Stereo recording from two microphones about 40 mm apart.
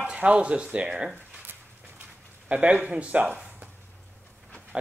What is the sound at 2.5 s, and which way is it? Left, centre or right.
Speech, right.